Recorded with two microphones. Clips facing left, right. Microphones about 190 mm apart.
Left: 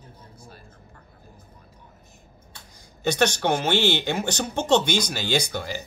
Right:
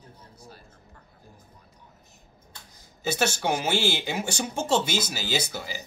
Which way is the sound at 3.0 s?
5° right (ahead or behind).